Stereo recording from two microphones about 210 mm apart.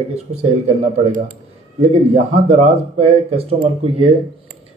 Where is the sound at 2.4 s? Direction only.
30° right (ahead or behind).